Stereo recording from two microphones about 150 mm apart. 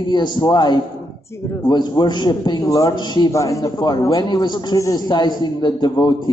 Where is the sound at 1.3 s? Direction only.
20° left (ahead or behind).